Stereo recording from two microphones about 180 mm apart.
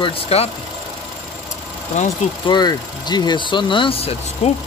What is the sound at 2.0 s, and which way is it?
Speech, 40° left (ahead or behind).